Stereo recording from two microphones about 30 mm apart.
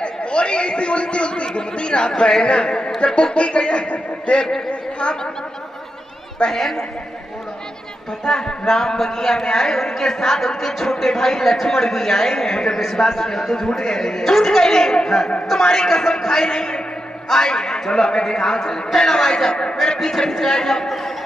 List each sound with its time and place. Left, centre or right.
0.0 s speech: left
6.5 s a man's voice: centre
8.3 s a man's voice: left
16.4 s a man's voice: left